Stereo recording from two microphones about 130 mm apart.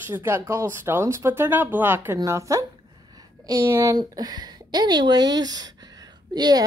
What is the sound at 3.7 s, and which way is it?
Speech, 20° right (ahead or behind).